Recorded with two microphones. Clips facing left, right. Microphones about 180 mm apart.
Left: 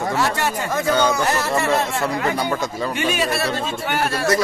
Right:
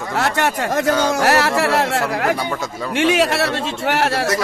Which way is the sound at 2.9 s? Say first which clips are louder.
Right 8 dB; 75° right (ahead or behind).